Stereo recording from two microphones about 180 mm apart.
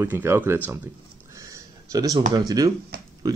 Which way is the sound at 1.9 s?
20° right (ahead or behind).